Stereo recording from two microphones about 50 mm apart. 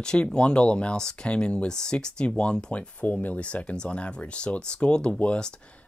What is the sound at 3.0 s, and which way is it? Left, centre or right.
Speech, left.